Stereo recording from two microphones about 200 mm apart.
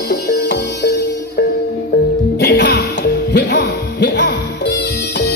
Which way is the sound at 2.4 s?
55° left (ahead or behind).